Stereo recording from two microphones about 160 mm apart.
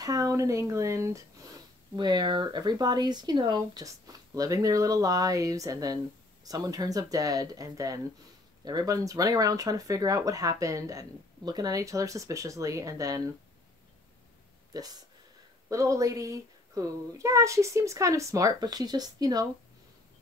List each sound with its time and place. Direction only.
0.0 s speech: 20° right (ahead or behind)
14.7 s speech: 25° right (ahead or behind)